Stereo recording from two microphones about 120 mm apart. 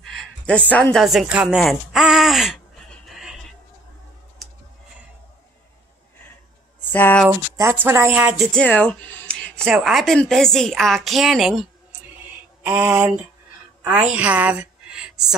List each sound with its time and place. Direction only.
0.0 s a sound: centre (ahead or behind)
0.7 s a woman's voice: 15° left (ahead or behind)
0.9 s speech: centre (ahead or behind)
3.1 s music: 5° right (ahead or behind)
6.9 s speech: 15° left (ahead or behind)
7.8 s speech: 20° right (ahead or behind)
8.5 s speech: 10° left (ahead or behind)
12.6 s a woman's voice: 15° right (ahead or behind)